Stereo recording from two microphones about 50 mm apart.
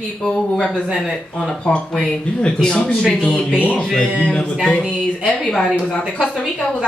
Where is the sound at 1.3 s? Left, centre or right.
Centre.